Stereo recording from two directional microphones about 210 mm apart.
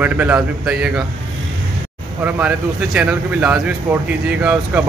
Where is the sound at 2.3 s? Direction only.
5° right (ahead or behind).